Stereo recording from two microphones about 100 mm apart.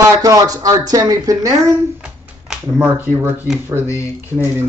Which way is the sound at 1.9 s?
5° right (ahead or behind).